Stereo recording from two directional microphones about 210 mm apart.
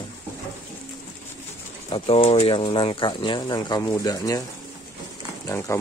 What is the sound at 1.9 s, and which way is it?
Speech, 25° left (ahead or behind).